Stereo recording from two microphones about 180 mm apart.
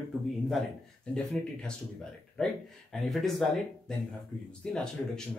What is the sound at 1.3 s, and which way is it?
Speech, 5° left (ahead or behind).